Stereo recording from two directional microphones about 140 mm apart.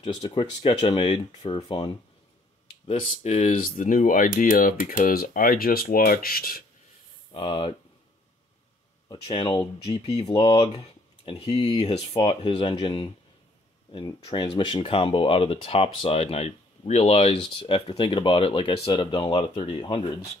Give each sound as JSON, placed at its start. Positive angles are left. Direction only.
{"t": 0.2, "sound": "speech", "side_deg": 40}
{"t": 2.9, "sound": "speech", "side_deg": 50}
{"t": 7.3, "sound": "speech", "side_deg": 35}
{"t": 9.2, "sound": "speech", "side_deg": 40}